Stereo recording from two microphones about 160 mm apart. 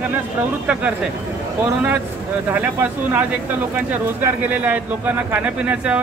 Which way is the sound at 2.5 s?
10° right (ahead or behind).